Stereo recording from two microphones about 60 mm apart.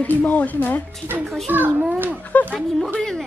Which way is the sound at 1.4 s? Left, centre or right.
Right.